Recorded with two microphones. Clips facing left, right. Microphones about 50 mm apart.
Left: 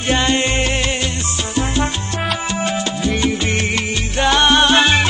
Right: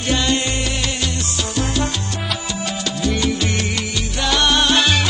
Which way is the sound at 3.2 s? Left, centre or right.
Left.